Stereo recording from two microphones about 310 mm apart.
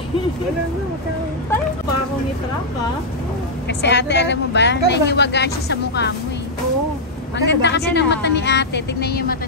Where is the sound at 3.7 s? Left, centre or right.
Left.